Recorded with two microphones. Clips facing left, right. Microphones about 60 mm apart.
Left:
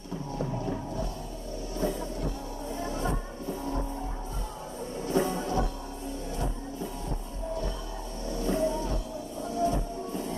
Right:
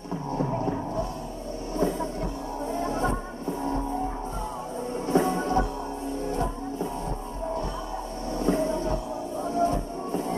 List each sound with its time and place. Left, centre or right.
0.4 s music: right
1.8 s train: right
2.7 s music: right
5.0 s music: right
8.4 s music: right